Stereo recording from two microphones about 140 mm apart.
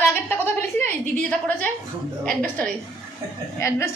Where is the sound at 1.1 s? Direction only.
10° left (ahead or behind).